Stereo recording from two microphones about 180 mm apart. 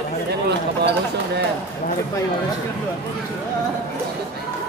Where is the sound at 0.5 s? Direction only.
70° right (ahead or behind).